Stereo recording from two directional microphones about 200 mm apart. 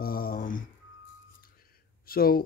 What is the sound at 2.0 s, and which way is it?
Speech, 45° left (ahead or behind).